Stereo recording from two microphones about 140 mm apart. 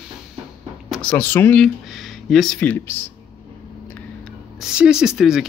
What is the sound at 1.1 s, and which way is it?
Speech, 15° left (ahead or behind).